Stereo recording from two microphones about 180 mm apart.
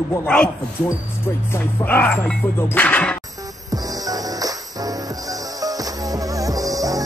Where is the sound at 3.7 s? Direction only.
20° right (ahead or behind).